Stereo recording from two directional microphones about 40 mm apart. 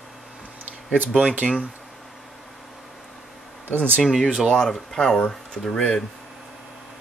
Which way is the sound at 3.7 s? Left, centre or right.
Right.